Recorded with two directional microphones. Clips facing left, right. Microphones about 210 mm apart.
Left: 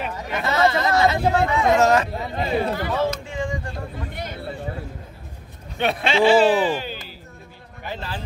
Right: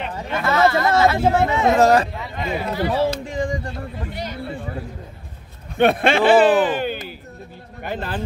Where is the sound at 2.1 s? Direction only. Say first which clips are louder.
Left 3 dB; 35° left (ahead or behind).